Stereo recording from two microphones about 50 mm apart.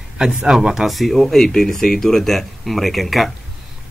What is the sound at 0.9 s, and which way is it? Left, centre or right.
Speech, centre.